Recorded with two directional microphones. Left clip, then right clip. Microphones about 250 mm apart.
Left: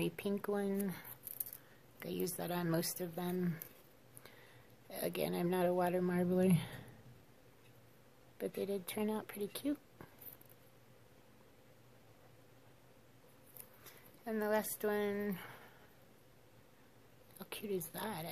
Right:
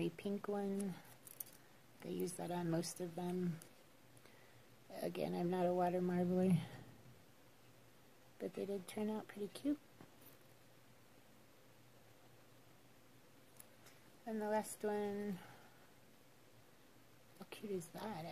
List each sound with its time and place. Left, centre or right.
0.0 s speech: centre
4.9 s speech: centre
8.4 s speech: centre
13.8 s speech: centre
17.4 s a woman's voice: centre